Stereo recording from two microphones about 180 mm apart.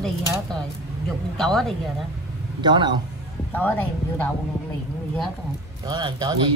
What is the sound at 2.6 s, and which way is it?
Speech, 25° right (ahead or behind).